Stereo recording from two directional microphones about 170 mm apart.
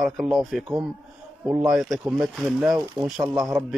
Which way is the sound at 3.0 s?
25° right (ahead or behind).